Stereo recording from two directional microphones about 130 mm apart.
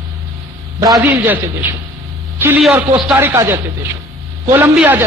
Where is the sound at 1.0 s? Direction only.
15° right (ahead or behind).